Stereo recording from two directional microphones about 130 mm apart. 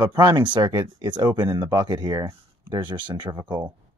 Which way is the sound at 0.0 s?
30° right (ahead or behind).